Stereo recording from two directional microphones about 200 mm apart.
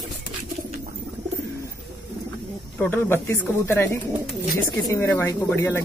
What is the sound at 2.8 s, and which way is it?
Speech, 10° left (ahead or behind).